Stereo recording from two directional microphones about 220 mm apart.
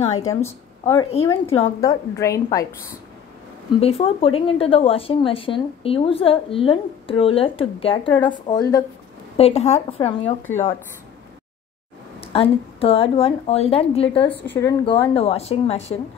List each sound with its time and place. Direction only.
0.2 s a woman's voice: 15° left (ahead or behind)
3.8 s a woman's voice: 25° left (ahead or behind)
9.4 s a woman's voice: 30° left (ahead or behind)
10.4 s a woman's voice: 10° left (ahead or behind)
12.2 s a woman's voice: 25° left (ahead or behind)
14.3 s a woman's voice: 10° left (ahead or behind)
15.1 s a woman's voice: 25° left (ahead or behind)